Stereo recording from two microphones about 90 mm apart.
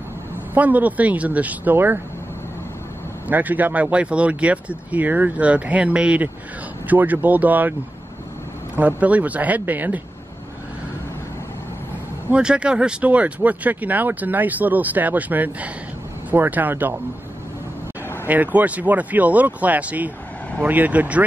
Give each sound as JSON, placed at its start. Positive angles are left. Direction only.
{"t": 0.6, "sound": "speech", "side_deg": -15}
{"t": 3.3, "sound": "speech", "side_deg": -20}
{"t": 8.7, "sound": "speech", "side_deg": -15}
{"t": 12.3, "sound": "speech", "side_deg": -10}
{"t": 18.2, "sound": "speech", "side_deg": -20}